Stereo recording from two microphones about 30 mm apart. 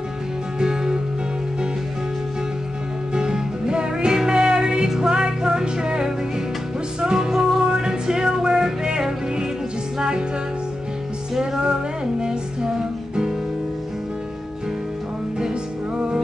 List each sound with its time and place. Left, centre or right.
0.6 s music: right
3.2 s music: right
4.8 s music: centre
5.1 s music: right
7.6 s music: right
9.9 s music: right
12.2 s music: right